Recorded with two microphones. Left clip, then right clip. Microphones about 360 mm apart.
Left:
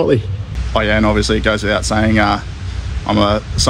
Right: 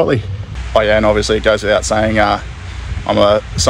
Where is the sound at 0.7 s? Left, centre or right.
Centre.